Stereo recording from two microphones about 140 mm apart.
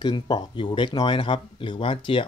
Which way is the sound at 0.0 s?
30° left (ahead or behind).